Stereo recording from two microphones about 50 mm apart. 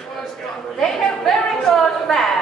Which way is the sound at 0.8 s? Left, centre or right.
Centre.